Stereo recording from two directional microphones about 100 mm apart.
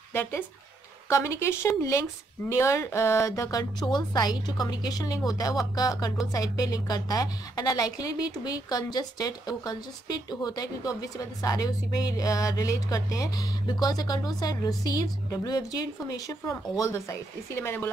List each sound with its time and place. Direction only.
0.1 s a woman's voice: 20° left (ahead or behind)